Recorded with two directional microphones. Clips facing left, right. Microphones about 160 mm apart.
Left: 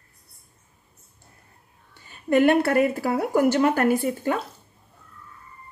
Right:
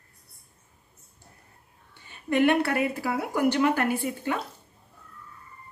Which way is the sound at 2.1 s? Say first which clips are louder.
Left 4 dB; 40° left (ahead or behind).